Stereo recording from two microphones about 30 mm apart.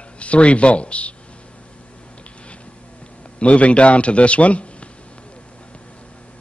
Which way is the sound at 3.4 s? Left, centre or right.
Left.